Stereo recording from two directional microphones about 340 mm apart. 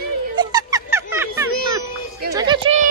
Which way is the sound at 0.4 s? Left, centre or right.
Centre.